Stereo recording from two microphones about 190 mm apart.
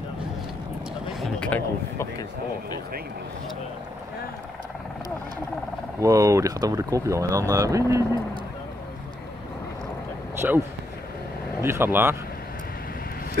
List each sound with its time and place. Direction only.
1.2 s a sound: 5° left (ahead or behind)
5.9 s speech: 15° right (ahead or behind)
10.4 s speech: 10° right (ahead or behind)
11.6 s speech: 10° right (ahead or behind)